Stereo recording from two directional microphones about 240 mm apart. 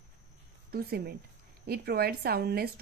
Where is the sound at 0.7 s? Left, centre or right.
Right.